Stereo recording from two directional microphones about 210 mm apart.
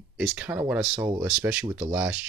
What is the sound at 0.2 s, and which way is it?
Speech, 5° right (ahead or behind).